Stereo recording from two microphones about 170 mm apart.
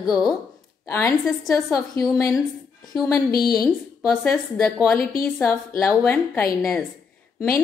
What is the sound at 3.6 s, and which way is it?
A woman's voice, centre (ahead or behind).